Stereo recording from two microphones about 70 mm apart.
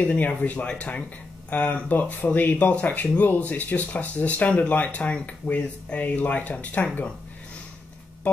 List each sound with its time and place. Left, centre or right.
0.0 s speech: left